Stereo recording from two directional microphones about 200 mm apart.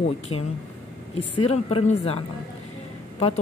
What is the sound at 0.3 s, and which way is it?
Speech, 90° left.